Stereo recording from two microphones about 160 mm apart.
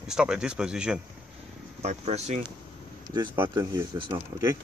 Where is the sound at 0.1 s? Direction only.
5° right (ahead or behind).